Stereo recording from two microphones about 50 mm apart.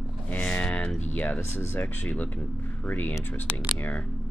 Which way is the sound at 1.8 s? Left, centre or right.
Left.